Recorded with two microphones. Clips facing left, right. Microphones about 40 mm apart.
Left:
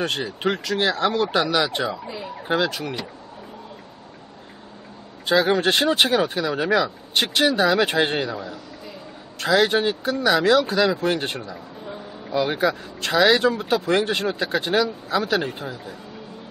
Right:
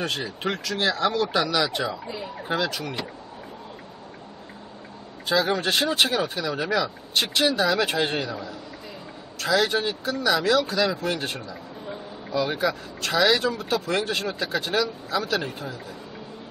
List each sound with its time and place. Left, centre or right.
0.1 s speech: centre
1.9 s speech: centre
2.4 s speech: centre
5.2 s speech: left
9.4 s speech: left
11.8 s a sound: centre
12.4 s speech: centre